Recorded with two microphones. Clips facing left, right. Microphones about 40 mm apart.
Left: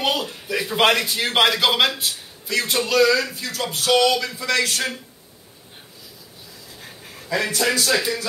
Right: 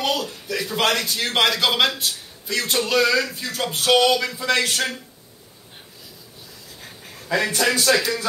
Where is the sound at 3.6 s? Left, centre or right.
Right.